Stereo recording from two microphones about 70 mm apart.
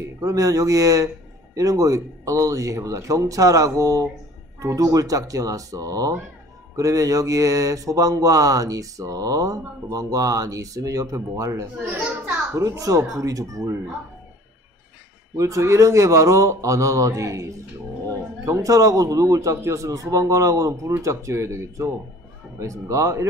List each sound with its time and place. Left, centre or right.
0.0 s a man's voice: right
15.3 s a man's voice: right